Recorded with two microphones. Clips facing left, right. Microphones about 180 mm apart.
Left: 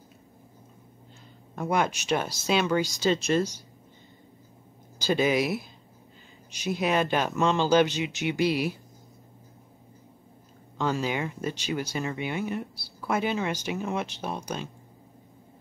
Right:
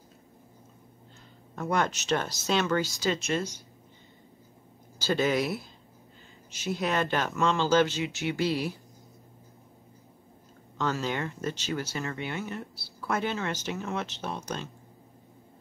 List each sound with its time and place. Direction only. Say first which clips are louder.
1.5 s speech: left 2 dB; 10° left (ahead or behind)
3.0 s speech: left 5 dB; 30° left (ahead or behind)
4.9 s speech: left 2 dB; 15° left (ahead or behind)
10.8 s speech: left 2 dB; 10° left (ahead or behind)